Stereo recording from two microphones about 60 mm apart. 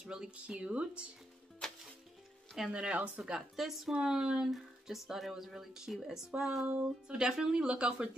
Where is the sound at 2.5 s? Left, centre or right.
Centre.